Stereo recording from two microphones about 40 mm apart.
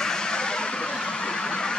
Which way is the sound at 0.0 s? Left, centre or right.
Centre.